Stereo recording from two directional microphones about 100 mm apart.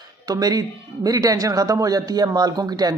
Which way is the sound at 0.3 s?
40° right (ahead or behind).